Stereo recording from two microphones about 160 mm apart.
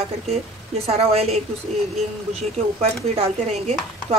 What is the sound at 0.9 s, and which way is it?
Speech, 40° right (ahead or behind).